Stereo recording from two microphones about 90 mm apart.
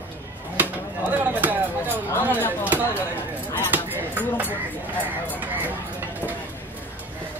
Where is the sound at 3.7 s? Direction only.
20° right (ahead or behind).